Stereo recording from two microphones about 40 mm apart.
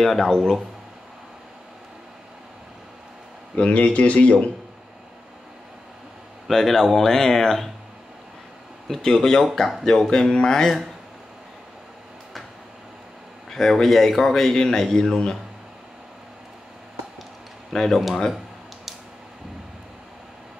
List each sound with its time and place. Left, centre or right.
0.0 s speech: centre
3.5 s speech: left
6.5 s speech: centre
8.8 s speech: centre
13.5 s speech: centre
17.7 s speech: centre